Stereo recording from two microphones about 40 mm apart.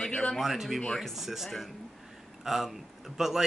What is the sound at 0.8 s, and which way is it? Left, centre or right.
Speech, centre.